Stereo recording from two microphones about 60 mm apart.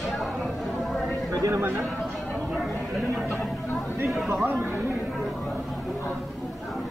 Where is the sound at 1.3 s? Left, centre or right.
Right.